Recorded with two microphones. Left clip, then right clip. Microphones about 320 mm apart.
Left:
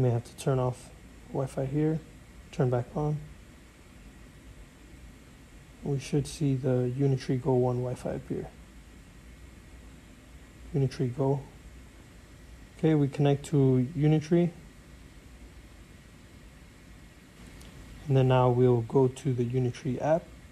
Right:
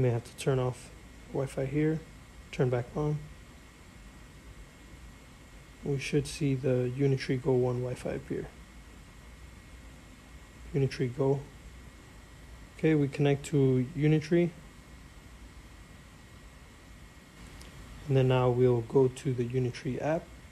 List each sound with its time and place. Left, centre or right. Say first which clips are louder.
0.0 s speech: even; centre
5.9 s speech: right 1 dB; centre
10.7 s speech: even; centre
12.8 s speech: left 1 dB; centre
18.1 s speech: left 2 dB; centre